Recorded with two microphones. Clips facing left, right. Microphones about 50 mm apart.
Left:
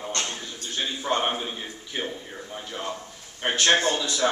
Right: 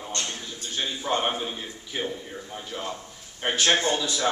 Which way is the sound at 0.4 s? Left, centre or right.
Centre.